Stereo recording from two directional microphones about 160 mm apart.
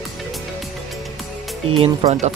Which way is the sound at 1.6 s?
35° right (ahead or behind).